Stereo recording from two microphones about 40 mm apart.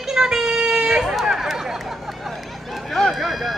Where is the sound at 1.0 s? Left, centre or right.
Centre.